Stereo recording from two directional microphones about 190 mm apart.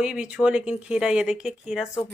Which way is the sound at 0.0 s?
5° right (ahead or behind).